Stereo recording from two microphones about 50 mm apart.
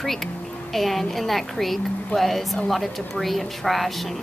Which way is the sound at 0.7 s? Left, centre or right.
Centre.